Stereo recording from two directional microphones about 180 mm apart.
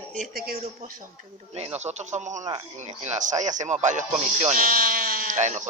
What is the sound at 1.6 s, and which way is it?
Speech, 35° right (ahead or behind).